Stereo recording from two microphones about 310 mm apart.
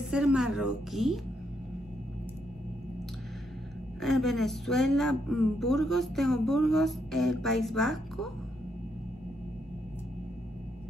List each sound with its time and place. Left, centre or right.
0.1 s a woman's voice: centre
4.0 s a woman's voice: centre